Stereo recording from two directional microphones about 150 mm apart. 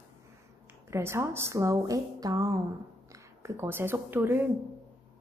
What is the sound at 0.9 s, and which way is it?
A woman's voice, 15° right (ahead or behind).